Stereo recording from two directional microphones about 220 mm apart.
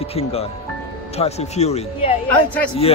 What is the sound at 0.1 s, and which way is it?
A man's voice, 25° left (ahead or behind).